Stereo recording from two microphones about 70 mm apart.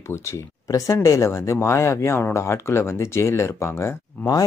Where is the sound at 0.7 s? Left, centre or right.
Left.